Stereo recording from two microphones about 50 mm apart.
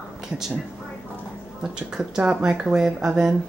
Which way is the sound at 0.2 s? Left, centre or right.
Centre.